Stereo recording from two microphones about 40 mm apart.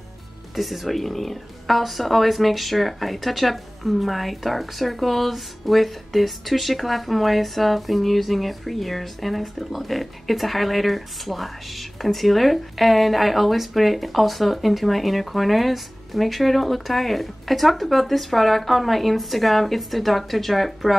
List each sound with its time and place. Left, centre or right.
0.6 s a woman's voice: centre